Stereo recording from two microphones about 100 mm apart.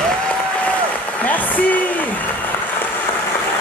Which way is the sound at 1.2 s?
15° left (ahead or behind).